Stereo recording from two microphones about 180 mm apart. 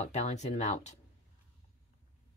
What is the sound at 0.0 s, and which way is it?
Speech, 40° left (ahead or behind).